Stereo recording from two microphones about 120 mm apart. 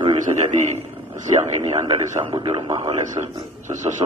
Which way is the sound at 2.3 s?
40° right (ahead or behind).